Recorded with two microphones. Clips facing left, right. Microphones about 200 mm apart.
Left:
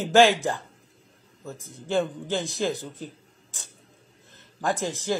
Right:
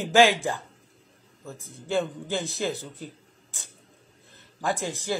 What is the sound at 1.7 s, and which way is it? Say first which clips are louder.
Speech: left 2 dB; 15° left (ahead or behind).